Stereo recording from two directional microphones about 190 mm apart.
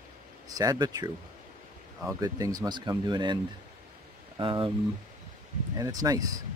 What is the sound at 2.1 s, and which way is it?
Speech, 20° right (ahead or behind).